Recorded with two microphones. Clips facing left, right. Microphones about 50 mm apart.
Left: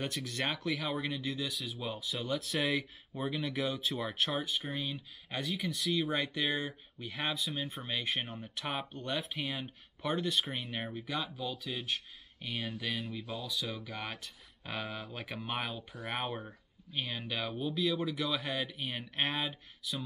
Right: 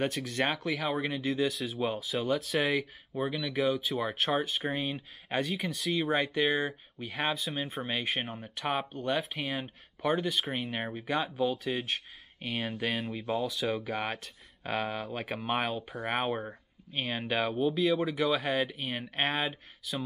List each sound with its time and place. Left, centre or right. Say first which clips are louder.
0.0 s speech: right 6 dB; right
0.9 s speech: right 6 dB; right; by 4.1 s centre
4.1 s speech: right 4 dB; right
5.4 s speech: right 2 dB; centre
13.3 s speech: right 11 dB; right
15.9 s speech: right 6 dB; centre
16.3 s speech: right 7 dB; right